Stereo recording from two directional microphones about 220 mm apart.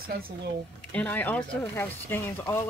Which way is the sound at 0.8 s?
5° left (ahead or behind).